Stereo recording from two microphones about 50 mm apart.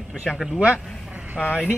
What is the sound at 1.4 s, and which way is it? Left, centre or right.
Speech, centre.